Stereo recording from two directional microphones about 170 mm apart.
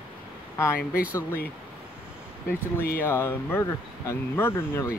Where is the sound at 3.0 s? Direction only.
15° left (ahead or behind).